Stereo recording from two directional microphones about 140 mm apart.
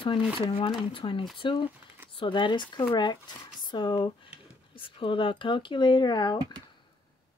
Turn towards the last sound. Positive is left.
turn(degrees=30)  # may be behind; listen again after turning